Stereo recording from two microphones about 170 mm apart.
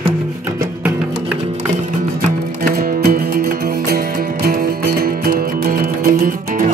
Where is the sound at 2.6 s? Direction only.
55° right (ahead or behind).